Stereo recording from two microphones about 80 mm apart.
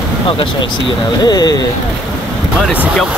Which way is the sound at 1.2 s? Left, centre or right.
Left.